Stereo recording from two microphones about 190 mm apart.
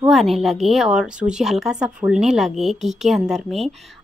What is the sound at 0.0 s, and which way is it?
A woman's voice, centre (ahead or behind).